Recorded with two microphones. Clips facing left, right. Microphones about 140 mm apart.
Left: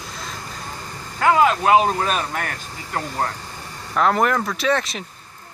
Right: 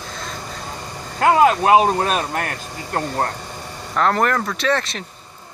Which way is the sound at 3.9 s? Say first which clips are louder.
Even; 5° left (ahead or behind).